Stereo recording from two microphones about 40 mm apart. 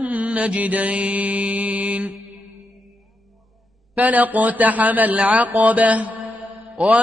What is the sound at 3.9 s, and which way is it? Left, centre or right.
A man's voice, right.